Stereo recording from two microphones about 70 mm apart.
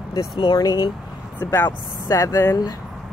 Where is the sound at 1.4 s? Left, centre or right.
Left.